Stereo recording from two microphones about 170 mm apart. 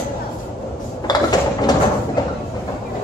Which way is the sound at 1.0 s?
25° left (ahead or behind).